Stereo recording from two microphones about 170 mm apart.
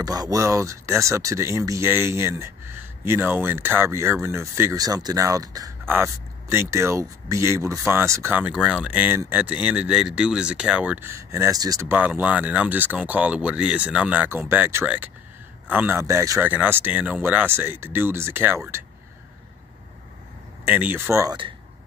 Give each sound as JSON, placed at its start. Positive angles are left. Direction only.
{"t": 0.0, "sound": "speech", "side_deg": -20}
{"t": 20.6, "sound": "speech", "side_deg": -10}